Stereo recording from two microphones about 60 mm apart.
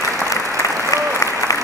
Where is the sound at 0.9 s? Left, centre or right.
Left.